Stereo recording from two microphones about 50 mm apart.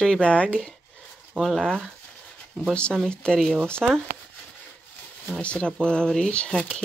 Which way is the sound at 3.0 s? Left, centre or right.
Centre.